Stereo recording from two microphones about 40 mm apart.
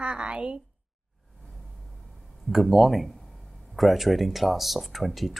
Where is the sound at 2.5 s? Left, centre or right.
Centre.